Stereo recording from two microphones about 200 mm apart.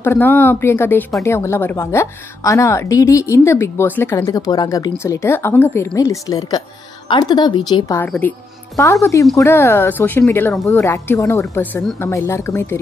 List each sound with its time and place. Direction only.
0.0 s a woman's voice: 10° left (ahead or behind)
8.0 s a woman's voice: 10° left (ahead or behind)